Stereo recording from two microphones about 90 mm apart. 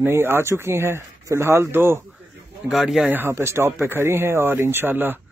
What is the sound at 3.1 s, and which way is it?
Speech, 25° right (ahead or behind).